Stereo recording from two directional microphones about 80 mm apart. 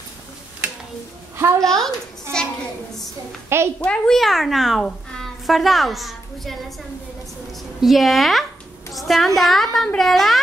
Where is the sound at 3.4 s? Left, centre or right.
Right.